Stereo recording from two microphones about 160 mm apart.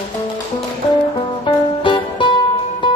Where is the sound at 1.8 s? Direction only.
30° left (ahead or behind).